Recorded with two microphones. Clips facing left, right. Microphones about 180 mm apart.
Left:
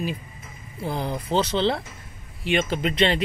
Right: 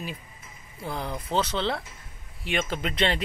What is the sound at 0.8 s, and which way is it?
Speech, 30° left (ahead or behind).